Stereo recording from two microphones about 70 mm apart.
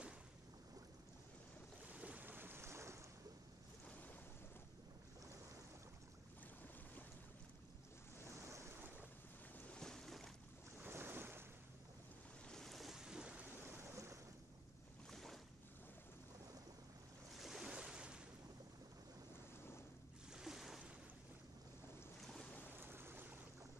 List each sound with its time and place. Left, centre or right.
1.9 s boat: centre; by 3.0 s right
9.8 s boat: centre
10.8 s boat: right
12.4 s boat: centre
13.9 s waves: right
15.0 s boat: centre
17.4 s waves: centre
20.2 s boat: centre
22.2 s boat: centre
22.8 s stream: right